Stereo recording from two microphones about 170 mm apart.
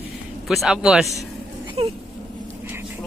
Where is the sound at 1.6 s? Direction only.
35° right (ahead or behind).